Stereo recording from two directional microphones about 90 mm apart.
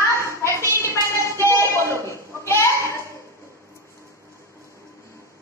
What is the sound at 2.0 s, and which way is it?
Goat, 30° left (ahead or behind).